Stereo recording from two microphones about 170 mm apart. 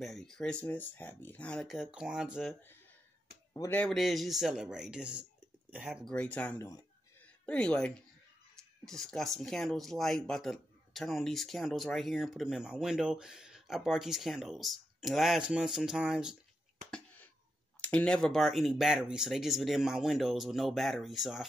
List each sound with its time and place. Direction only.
0.0 s speech: centre (ahead or behind)
3.5 s speech: 15° left (ahead or behind)
3.8 s speech: centre (ahead or behind); by 6.9 s 15° left (ahead or behind)
7.4 s speech: 5° left (ahead or behind)
17.7 s speech: 10° left (ahead or behind)